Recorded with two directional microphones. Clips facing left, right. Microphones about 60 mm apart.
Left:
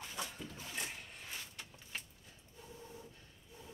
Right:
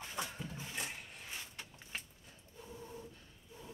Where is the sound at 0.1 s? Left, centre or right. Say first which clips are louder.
Right 4 dB; right.